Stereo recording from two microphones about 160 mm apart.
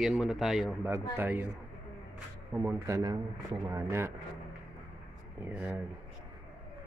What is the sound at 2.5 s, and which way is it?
Speech, 15° right (ahead or behind).